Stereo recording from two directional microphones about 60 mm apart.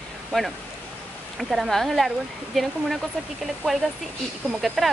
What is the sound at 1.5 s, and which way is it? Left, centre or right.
Speech, centre.